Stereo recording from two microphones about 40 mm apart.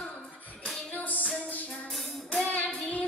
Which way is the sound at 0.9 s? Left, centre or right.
Left.